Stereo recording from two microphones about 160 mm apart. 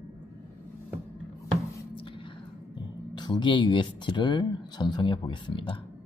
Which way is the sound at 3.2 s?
30° left (ahead or behind).